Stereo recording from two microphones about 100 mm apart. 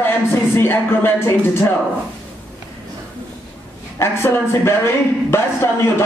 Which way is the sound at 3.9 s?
25° left (ahead or behind).